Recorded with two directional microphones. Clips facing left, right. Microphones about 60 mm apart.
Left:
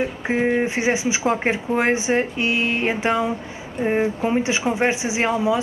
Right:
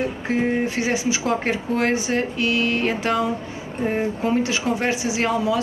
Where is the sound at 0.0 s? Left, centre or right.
Left.